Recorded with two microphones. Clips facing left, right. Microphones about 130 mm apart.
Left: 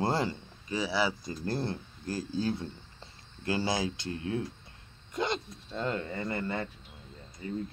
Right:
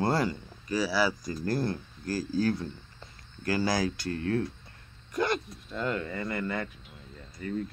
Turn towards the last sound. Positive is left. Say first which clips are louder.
# right 2 dB
turn(degrees=20)  # may be behind; listen again after turning